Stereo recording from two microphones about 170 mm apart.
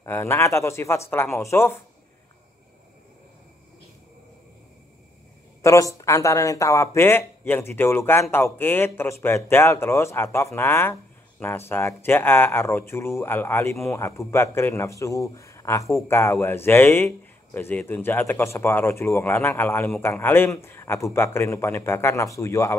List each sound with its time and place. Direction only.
0.0 s a man's voice: 15° left (ahead or behind)
5.6 s a man's voice: 20° left (ahead or behind)